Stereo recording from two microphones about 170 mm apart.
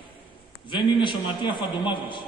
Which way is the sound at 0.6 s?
30° left (ahead or behind).